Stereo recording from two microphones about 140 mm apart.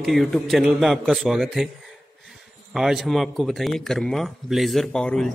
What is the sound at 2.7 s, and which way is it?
Speech, 5° right (ahead or behind).